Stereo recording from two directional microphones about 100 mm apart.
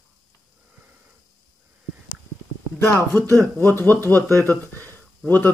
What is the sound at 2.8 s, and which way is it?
Speech, 25° left (ahead or behind).